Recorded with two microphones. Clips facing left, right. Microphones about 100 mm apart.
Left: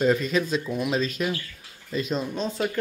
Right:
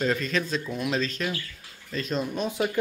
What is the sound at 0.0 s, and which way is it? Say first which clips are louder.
Speech: left 4 dB; 10° left (ahead or behind).